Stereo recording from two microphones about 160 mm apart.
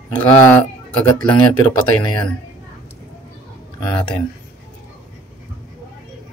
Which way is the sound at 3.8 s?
30° left (ahead or behind).